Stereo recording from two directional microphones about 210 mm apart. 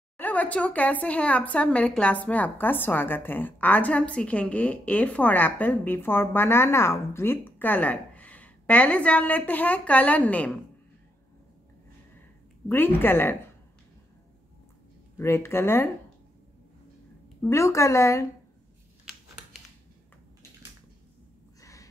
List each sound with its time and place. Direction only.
0.2 s a woman's voice: 5° left (ahead or behind)
12.6 s a woman's voice: 10° left (ahead or behind)
15.1 s a woman's voice: 10° left (ahead or behind)
17.4 s a woman's voice: 15° left (ahead or behind)
21.5 s a sound: 15° left (ahead or behind)